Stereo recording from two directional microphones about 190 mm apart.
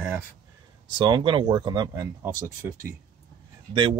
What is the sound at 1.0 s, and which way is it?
Speech, 25° right (ahead or behind).